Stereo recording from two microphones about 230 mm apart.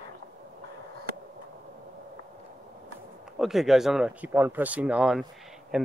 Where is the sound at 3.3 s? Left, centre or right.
Centre.